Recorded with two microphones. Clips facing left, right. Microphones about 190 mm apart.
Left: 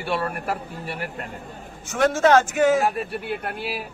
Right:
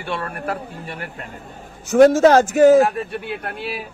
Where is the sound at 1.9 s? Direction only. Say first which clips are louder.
Right 6 dB; 35° right (ahead or behind).